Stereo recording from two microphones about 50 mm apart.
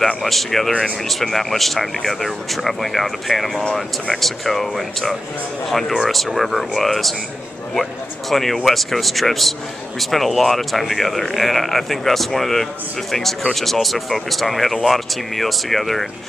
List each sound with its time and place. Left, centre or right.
0.2 s speech: centre